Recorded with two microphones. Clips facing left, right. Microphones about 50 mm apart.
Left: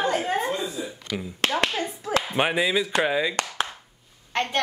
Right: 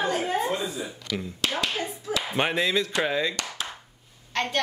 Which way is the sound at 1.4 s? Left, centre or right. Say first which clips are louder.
Left 5 dB; left.